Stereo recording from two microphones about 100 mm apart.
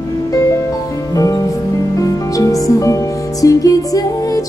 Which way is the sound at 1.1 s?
35° left (ahead or behind).